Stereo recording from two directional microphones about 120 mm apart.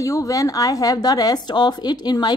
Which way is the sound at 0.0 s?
30° left (ahead or behind).